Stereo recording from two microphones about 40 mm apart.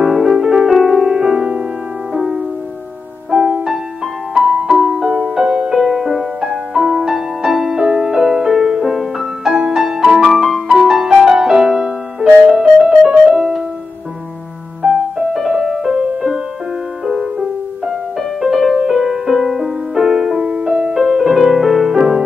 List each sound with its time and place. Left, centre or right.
0.0 s music: centre
0.9 s music: right
2.1 s music: centre
3.3 s music: centre
4.3 s music: centre
14.8 s music: centre
18.4 s music: centre; by 20.9 s right
20.9 s music: centre
21.9 s music: centre